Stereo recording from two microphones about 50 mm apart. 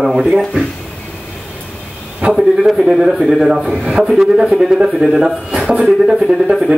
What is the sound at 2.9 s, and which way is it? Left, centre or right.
Speech, centre.